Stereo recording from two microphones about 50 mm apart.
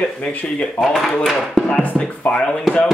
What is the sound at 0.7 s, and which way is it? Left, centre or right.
Rub, centre.